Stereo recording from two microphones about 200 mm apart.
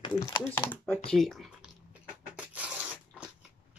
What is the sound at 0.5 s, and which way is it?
Speech, 10° left (ahead or behind).